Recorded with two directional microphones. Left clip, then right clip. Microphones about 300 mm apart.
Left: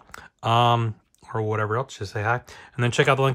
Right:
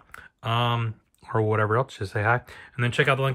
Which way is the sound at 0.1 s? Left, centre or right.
Centre.